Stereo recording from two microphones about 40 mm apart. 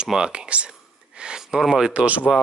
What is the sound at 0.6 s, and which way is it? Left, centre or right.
Whispering, right.